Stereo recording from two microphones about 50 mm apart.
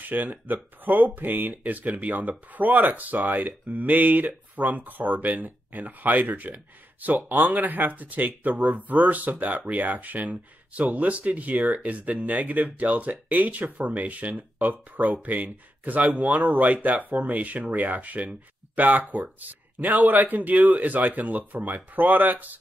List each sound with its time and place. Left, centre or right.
0.0 s speech: right